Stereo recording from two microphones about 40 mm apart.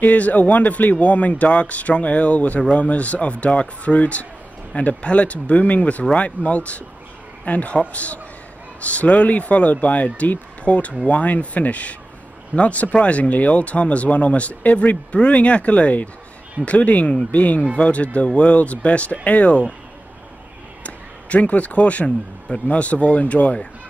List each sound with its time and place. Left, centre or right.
0.0 s speech: left
20.8 s speech: left